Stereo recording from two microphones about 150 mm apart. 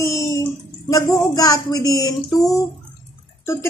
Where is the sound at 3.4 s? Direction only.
20° left (ahead or behind).